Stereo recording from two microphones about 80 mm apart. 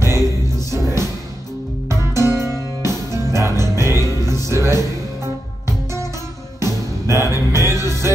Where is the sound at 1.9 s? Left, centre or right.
Right.